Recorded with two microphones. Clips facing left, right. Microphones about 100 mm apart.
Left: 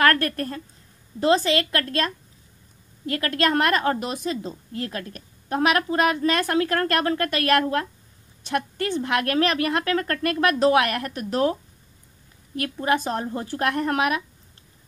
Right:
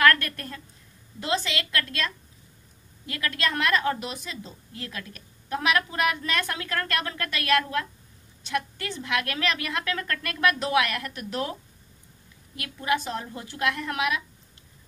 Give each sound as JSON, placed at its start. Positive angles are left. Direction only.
{"t": 0.0, "sound": "a woman's voice", "side_deg": 35}
{"t": 12.5, "sound": "a woman's voice", "side_deg": 40}